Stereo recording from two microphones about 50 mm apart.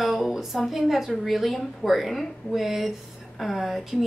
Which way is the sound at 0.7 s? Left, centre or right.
Centre.